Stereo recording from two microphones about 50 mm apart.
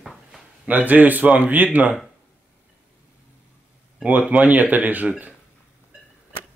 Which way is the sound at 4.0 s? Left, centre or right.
Right.